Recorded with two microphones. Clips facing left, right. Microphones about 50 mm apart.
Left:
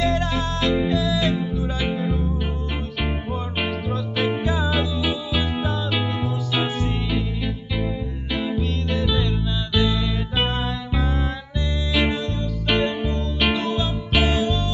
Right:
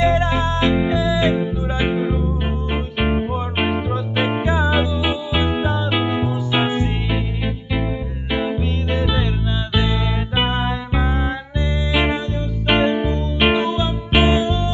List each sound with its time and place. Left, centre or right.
0.0 s music: right